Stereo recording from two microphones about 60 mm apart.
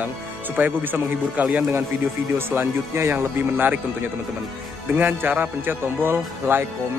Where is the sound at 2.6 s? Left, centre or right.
Right.